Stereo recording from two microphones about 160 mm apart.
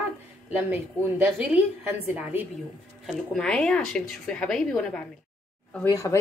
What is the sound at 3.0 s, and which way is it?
Speech, 5° left (ahead or behind).